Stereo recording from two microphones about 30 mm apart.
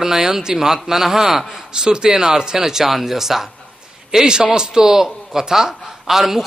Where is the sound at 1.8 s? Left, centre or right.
Right; by 3.4 s centre.